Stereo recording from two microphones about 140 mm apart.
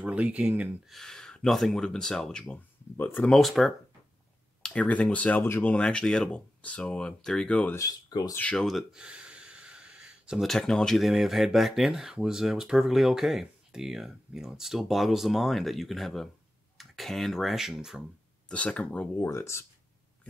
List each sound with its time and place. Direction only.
0.0 s speech: 10° right (ahead or behind)
0.9 s speech: 5° left (ahead or behind)
3.3 s speech: centre (ahead or behind)
7.7 s speech: 25° left (ahead or behind)
8.4 s speech: 5° left (ahead or behind)
18.5 s speech: 10° left (ahead or behind)